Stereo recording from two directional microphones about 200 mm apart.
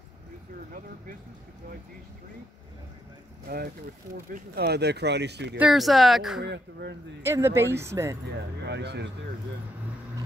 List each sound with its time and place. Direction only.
3.4 s speech: 50° right (ahead or behind)
5.6 s speech: centre (ahead or behind)
6.4 s speech: 55° right (ahead or behind)
7.2 s speech: 10° right (ahead or behind)
8.6 s speech: 60° right (ahead or behind)